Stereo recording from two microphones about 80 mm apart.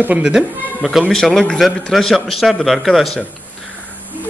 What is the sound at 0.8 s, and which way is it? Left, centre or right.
A man's voice, centre.